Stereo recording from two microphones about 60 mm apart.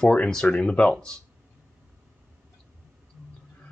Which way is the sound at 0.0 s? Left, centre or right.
Centre.